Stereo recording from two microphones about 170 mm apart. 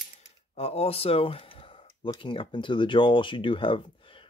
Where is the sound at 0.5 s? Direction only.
35° left (ahead or behind).